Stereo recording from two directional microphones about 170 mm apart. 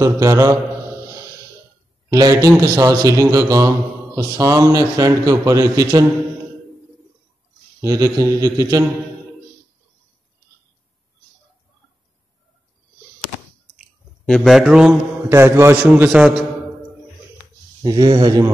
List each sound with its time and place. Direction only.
0.0 s a man's voice: 20° right (ahead or behind)
2.0 s a man's voice: 20° right (ahead or behind)
7.8 s a man's voice: 20° right (ahead or behind)
13.7 s a man's voice: centre (ahead or behind)
17.8 s a man's voice: 25° right (ahead or behind)